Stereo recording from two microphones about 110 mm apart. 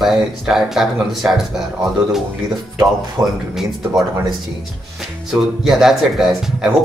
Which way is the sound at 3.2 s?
40° right (ahead or behind).